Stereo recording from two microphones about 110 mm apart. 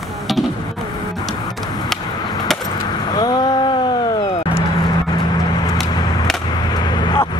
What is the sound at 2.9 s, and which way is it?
Vehicle, 35° left (ahead or behind).